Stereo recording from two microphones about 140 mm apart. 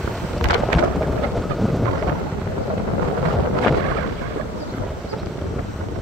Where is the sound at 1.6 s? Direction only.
Centre (ahead or behind).